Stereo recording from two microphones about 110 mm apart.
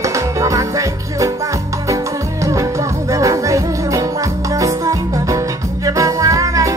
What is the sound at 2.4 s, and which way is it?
Music, 30° right (ahead or behind).